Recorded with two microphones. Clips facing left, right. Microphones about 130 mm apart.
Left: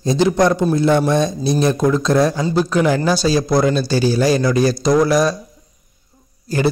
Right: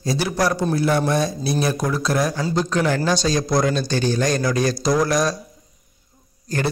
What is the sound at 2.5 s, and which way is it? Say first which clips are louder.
Speech: left 4 dB; 10° left (ahead or behind).